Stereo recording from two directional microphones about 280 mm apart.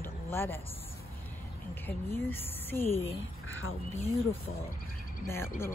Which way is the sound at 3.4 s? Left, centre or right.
Left.